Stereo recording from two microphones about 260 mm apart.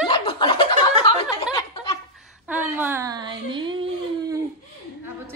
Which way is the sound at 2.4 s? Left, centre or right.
Centre.